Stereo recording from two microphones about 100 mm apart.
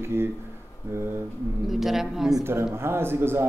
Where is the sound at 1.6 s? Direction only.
5° right (ahead or behind).